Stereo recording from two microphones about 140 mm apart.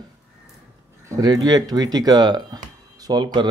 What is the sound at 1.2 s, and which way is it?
Speech, 30° right (ahead or behind).